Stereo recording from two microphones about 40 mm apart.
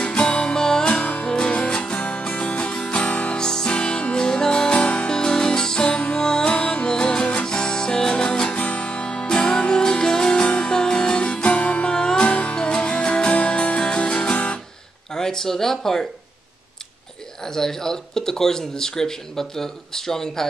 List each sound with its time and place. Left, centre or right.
0.0 s music: left
1.3 s music: centre
3.7 s music: left
11.9 s music: centre
15.1 s speech: centre
17.4 s speech: centre